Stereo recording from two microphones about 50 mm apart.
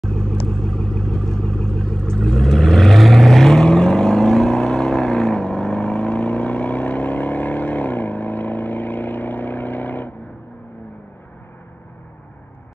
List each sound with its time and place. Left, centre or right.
0.2 s vehicle: centre; by 10.1 s left